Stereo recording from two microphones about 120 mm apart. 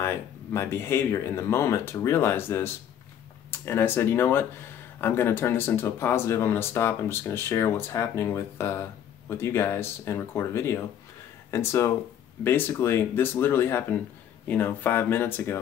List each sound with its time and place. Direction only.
0.0 s speech: 20° left (ahead or behind)